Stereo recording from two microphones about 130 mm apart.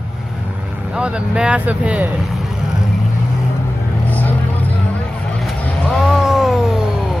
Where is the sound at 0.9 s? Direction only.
5° right (ahead or behind).